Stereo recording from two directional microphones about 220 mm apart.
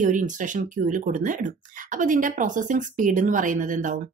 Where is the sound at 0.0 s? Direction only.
35° right (ahead or behind).